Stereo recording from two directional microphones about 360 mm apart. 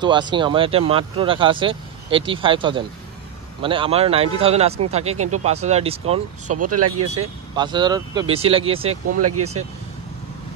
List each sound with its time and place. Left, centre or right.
0.0 s speech: centre
5.1 s speech: right
5.4 s speech: centre
6.5 s speech: right
7.5 s speech: centre
9.2 s speech: right